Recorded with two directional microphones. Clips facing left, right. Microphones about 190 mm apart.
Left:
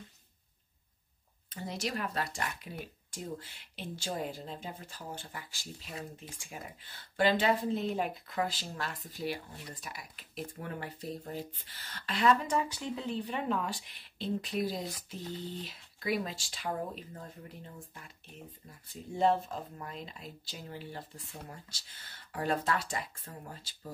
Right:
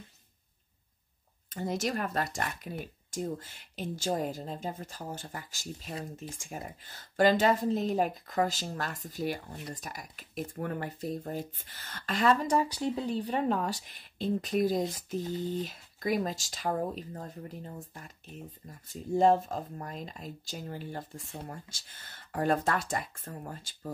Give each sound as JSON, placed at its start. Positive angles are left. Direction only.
{"t": 1.5, "sound": "speech", "side_deg": -50}
{"t": 19.1, "sound": "speech", "side_deg": -45}